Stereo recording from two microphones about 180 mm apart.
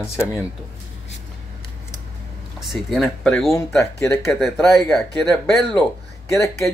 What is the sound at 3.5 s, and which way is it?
Speech, 15° left (ahead or behind).